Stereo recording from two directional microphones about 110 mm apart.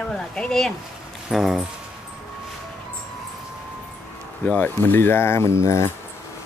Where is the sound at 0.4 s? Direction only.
5° left (ahead or behind).